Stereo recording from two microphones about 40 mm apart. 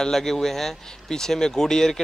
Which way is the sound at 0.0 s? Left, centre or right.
Centre.